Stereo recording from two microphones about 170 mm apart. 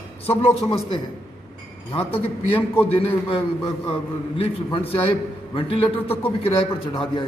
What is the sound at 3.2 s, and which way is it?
A man's voice, 35° left (ahead or behind).